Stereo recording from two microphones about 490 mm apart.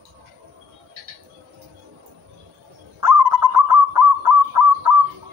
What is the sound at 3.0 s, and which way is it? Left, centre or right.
Bird, right.